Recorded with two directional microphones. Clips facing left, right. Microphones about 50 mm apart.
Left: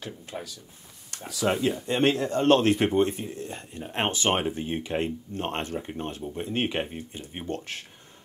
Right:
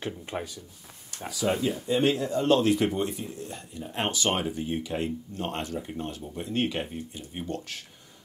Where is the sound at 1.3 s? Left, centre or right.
Left.